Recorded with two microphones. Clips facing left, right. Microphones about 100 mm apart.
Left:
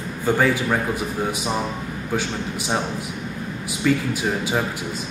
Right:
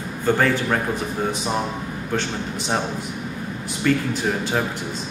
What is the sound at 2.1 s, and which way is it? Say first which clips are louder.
Speech: even; 5° left (ahead or behind).